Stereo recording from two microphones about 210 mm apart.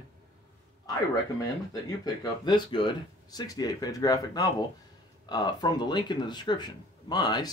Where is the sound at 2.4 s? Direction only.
20° left (ahead or behind).